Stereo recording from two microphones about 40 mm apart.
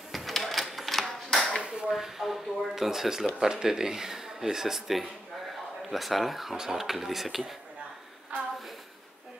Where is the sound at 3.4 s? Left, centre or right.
Centre.